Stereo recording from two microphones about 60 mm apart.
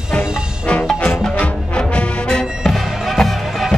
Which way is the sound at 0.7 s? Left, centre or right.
Centre.